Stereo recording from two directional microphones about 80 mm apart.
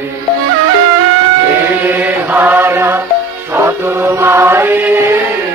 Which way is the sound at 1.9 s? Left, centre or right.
Right.